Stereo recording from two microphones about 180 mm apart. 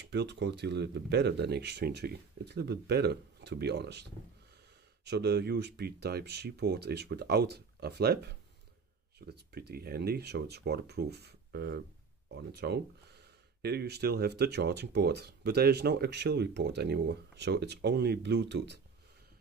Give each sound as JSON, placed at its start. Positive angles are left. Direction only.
{"t": 0.0, "sound": "speech", "side_deg": -70}